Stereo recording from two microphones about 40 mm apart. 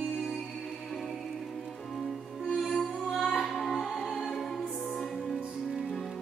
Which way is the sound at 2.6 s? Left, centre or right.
Centre.